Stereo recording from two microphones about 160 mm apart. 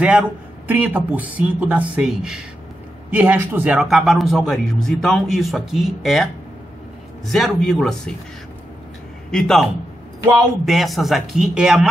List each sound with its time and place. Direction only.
0.0 s a man's voice: 5° right (ahead or behind)
7.2 s a man's voice: centre (ahead or behind)
9.3 s a man's voice: 5° left (ahead or behind)